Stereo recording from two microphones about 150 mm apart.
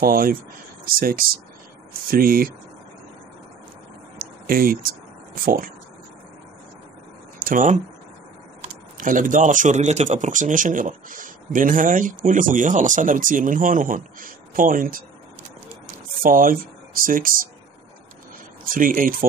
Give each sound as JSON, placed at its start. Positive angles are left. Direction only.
{"t": 0.0, "sound": "speech", "side_deg": -75}
{"t": 4.2, "sound": "a sound", "side_deg": -75}
{"t": 5.3, "sound": "speech", "side_deg": -75}
{"t": 7.3, "sound": "a sound", "side_deg": -70}
{"t": 8.9, "sound": "speech", "side_deg": -65}
{"t": 16.2, "sound": "speech", "side_deg": -70}
{"t": 18.6, "sound": "speech", "side_deg": -70}